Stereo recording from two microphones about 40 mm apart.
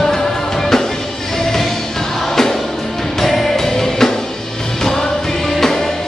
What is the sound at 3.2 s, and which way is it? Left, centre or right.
Music, centre.